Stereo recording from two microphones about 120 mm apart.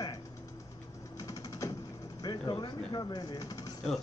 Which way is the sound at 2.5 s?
35° left (ahead or behind).